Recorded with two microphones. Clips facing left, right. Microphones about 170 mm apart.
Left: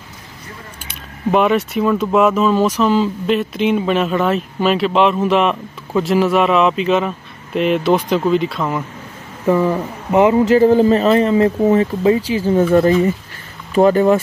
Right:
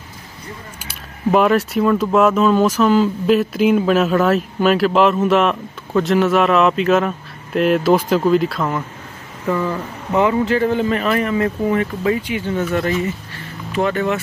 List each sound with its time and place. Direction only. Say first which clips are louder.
0.8 s speech: right 1 dB; centre (ahead or behind)
9.5 s a man's voice: left 5 dB; 25° left (ahead or behind)